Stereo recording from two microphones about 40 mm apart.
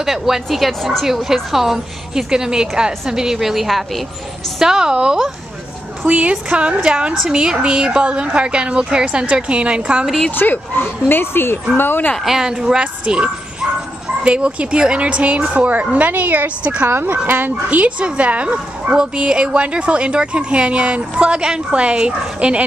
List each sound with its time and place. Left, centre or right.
0.0 s a woman's voice: centre
3.3 s a woman's voice: centre
4.6 s a woman's voice: centre
6.0 s a woman's voice: right
10.3 s speech: left
11.1 s speech: left
12.3 s a woman's voice: centre; by 16.5 s right
16.8 s speech: right
17.3 s speech: right